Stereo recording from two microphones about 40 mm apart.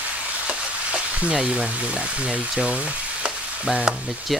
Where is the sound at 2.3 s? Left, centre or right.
Right.